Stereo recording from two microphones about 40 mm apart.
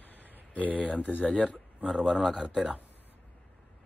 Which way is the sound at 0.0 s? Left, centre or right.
Left.